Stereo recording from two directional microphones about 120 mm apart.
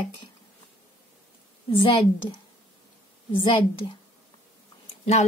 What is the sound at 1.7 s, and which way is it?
Speech, 45° left (ahead or behind).